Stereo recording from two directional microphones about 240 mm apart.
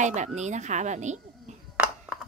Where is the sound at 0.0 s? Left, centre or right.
Right.